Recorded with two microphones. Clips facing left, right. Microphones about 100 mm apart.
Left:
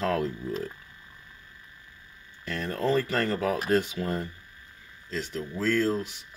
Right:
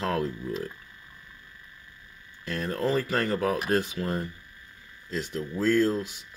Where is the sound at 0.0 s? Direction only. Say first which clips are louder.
Left 1 dB; 5° right (ahead or behind).